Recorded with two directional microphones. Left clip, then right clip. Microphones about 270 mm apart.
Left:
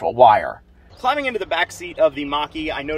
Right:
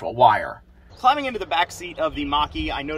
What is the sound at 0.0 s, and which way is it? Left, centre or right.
Speech, left.